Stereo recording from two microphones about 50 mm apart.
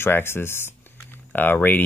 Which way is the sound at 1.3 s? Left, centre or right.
Left.